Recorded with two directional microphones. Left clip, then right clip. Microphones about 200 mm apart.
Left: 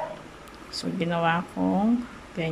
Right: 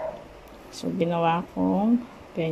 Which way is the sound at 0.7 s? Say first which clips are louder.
Right 3 dB; 15° right (ahead or behind).